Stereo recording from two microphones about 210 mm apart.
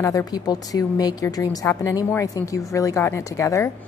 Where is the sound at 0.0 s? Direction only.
15° left (ahead or behind).